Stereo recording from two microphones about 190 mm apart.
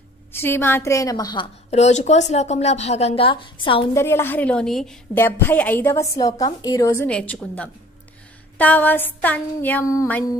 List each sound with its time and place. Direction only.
0.3 s a woman's voice: 10° left (ahead or behind)
1.7 s a woman's voice: 35° left (ahead or behind)
3.9 s a woman's voice: 10° left (ahead or behind)